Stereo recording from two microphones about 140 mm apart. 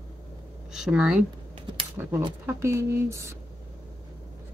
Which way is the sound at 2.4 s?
20° right (ahead or behind).